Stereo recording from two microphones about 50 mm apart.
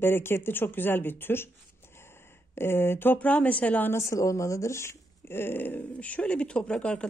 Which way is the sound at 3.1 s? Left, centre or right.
Left.